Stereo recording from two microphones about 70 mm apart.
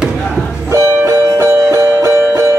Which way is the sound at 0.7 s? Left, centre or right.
Right.